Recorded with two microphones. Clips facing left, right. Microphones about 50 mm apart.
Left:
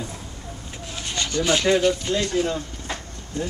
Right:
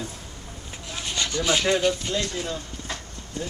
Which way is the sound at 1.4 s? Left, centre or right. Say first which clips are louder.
Left 3 dB; centre.